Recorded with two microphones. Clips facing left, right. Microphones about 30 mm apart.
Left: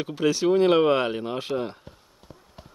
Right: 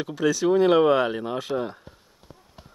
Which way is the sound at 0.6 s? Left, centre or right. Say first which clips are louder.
Right 2 dB; centre.